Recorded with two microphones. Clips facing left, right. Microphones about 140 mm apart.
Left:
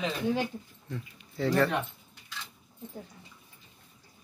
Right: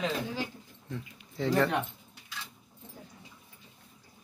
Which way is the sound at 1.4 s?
20° right (ahead or behind).